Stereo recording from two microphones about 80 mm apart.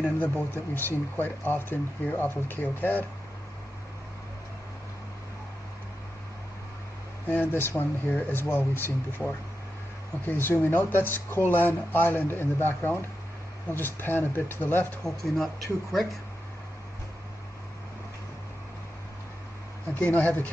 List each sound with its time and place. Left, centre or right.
0.0 s speech: centre
7.2 s speech: left
15.0 s speech: centre
19.9 s speech: left